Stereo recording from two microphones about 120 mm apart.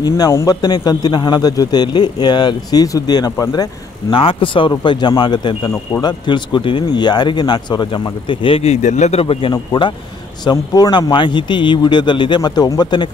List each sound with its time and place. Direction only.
0.3 s a man's voice: 25° left (ahead or behind)
0.6 s a man's voice: 35° left (ahead or behind)
4.1 s a man's voice: 45° left (ahead or behind)
8.8 s a man's voice: 75° left (ahead or behind)
9.2 s a man's voice: 50° left (ahead or behind)
9.5 s a man's voice: 40° left (ahead or behind)